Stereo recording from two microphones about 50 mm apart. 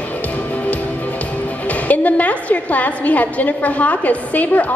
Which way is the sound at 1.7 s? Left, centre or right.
Left.